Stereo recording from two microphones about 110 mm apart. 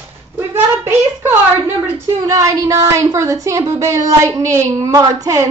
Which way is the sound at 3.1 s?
30° right (ahead or behind).